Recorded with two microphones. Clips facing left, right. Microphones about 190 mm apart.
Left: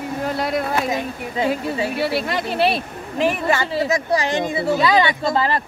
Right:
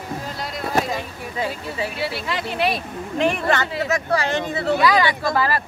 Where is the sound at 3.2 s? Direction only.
5° left (ahead or behind).